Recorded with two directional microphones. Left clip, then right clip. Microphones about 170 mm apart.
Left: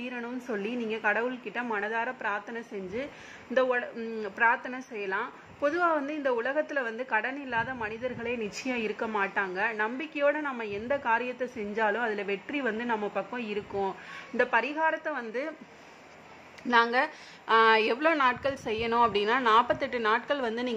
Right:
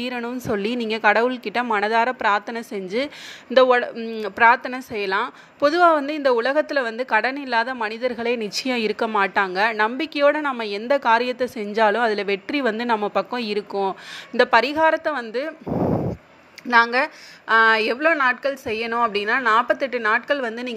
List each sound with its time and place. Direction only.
0.0 s a woman's voice: 25° right (ahead or behind)
3.9 s a woman's voice: 15° right (ahead or behind)
4.2 s a woman's voice: 25° right (ahead or behind)
16.7 s a woman's voice: 20° right (ahead or behind)